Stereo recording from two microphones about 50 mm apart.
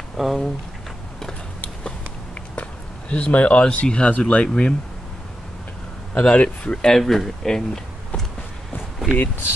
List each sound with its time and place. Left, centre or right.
0.2 s speech: centre
2.5 s speech: left
6.1 s speech: left
6.8 s speech: centre